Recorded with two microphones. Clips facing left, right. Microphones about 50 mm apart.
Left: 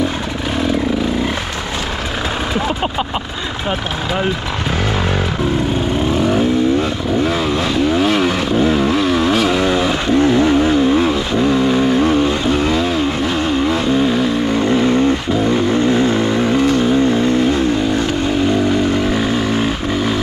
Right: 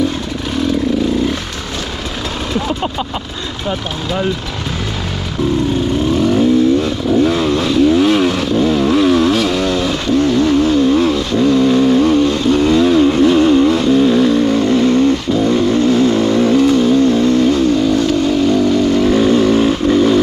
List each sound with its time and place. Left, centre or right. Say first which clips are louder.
6.2 s vehicle: right 4 dB; centre